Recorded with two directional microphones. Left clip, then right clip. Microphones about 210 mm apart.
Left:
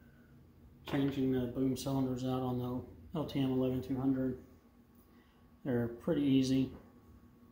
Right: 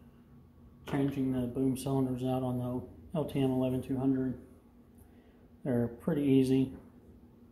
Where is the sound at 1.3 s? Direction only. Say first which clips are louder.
Right 2 dB; 25° right (ahead or behind).